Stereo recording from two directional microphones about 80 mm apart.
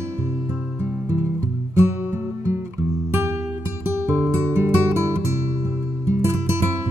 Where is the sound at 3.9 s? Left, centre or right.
Right.